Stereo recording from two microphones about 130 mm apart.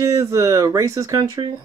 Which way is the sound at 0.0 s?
25° right (ahead or behind).